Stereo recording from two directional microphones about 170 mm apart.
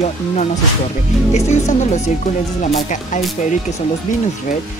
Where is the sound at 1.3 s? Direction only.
45° left (ahead or behind).